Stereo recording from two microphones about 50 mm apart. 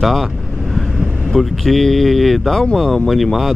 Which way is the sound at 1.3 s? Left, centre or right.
Centre.